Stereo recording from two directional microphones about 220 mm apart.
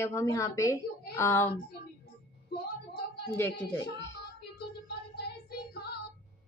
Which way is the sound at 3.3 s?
10° left (ahead or behind).